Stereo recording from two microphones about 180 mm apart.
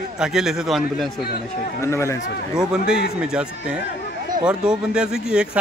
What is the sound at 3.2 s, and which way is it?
A man's voice, 5° right (ahead or behind).